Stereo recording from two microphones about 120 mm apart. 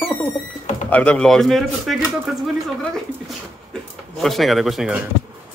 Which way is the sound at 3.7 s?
Centre (ahead or behind).